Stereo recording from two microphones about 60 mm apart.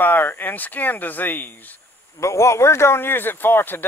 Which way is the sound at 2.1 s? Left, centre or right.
Left.